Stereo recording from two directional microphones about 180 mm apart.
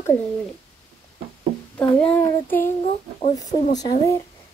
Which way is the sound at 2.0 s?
10° left (ahead or behind).